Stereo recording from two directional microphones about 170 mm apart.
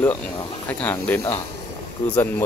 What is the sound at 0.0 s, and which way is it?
Speech, 15° left (ahead or behind).